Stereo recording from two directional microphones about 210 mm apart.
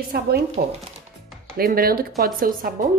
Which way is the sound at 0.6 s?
45° right (ahead or behind).